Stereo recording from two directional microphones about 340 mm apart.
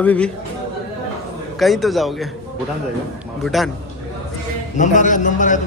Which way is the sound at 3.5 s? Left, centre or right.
Centre.